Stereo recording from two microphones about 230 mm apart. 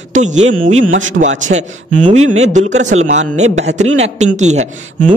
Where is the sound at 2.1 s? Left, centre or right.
Right.